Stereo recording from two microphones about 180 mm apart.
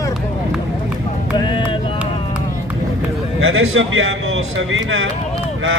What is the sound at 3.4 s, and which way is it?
A man's voice, 90° right.